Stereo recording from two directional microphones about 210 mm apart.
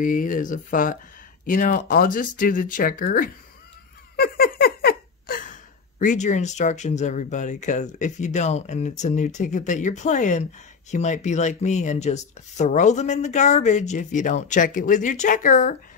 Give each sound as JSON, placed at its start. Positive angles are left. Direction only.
{"t": 0.0, "sound": "speech", "side_deg": 40}